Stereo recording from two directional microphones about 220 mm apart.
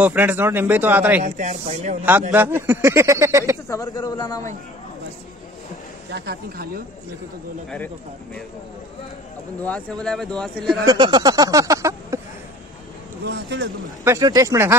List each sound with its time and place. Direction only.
0.0 s speech: 10° right (ahead or behind)
1.2 s speech: 30° right (ahead or behind)
2.3 s speech: 10° right (ahead or behind)
3.6 s a man's voice: 15° left (ahead or behind)
6.1 s speech: 45° right (ahead or behind)
9.6 s speech: 5° left (ahead or behind)
10.9 s speech: 20° right (ahead or behind)
13.2 s speech: 50° right (ahead or behind)
14.0 s speech: 15° right (ahead or behind)